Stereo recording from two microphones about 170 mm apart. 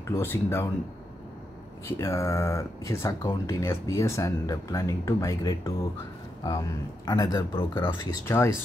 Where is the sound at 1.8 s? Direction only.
15° left (ahead or behind).